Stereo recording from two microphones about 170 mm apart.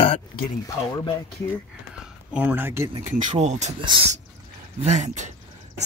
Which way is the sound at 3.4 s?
40° right (ahead or behind).